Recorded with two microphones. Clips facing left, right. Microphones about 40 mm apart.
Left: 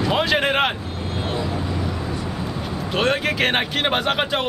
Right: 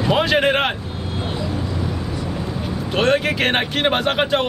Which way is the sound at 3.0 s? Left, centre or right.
Centre.